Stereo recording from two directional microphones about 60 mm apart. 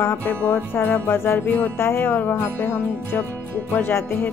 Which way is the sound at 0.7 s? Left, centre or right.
Left.